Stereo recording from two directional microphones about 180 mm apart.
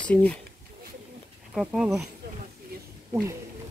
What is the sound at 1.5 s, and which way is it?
Speech, centre (ahead or behind).